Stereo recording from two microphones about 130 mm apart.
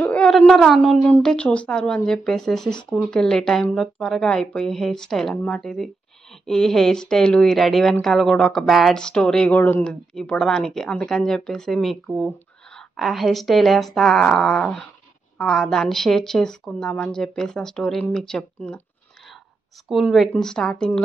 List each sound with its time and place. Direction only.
0.1 s speech: 10° left (ahead or behind)
19.9 s speech: centre (ahead or behind)